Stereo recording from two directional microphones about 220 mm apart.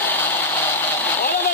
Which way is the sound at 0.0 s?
10° left (ahead or behind).